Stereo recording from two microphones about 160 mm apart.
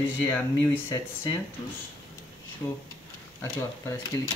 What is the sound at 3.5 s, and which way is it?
Speech, 20° left (ahead or behind).